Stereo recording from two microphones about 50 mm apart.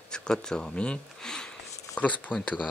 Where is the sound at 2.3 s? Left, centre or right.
Centre.